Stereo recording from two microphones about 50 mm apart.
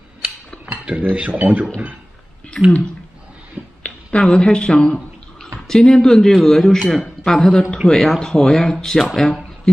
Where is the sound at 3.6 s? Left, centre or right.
Right.